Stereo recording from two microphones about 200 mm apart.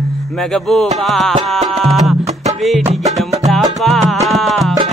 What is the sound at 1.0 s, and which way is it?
Music, centre (ahead or behind).